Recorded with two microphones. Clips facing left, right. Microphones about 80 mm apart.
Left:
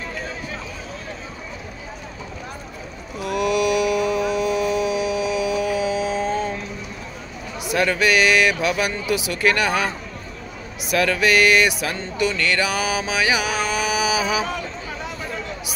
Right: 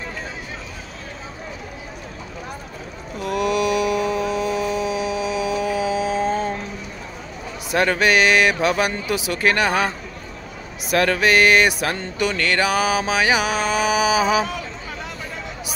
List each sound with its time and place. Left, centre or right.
3.3 s mantra: right
7.6 s speech: right
10.9 s speech: right